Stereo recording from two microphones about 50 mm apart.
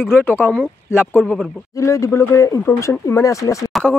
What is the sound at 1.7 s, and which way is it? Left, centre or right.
Speech, left.